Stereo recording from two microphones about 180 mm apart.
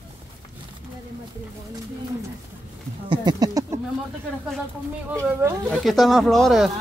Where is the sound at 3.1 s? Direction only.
20° right (ahead or behind).